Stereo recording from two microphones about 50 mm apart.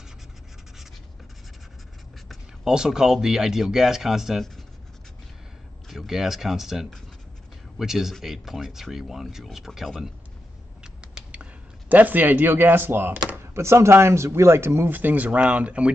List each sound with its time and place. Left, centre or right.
2.6 s speech: centre
5.9 s speech: centre
10.8 s a sound: centre
11.9 s speech: right
13.6 s speech: right
14.9 s speech: right